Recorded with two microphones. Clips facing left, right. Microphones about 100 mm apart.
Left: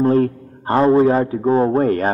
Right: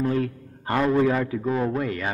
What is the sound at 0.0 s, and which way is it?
A man's voice, 40° left (ahead or behind).